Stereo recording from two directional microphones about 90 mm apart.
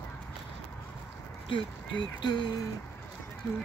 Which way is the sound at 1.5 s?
70° left (ahead or behind).